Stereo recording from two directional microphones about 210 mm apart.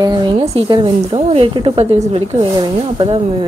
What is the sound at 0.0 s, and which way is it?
Speech, 20° right (ahead or behind).